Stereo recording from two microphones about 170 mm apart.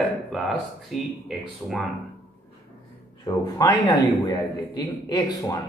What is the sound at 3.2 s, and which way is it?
Speech, 25° left (ahead or behind).